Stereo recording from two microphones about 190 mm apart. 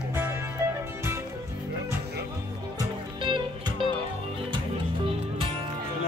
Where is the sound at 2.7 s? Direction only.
25° right (ahead or behind).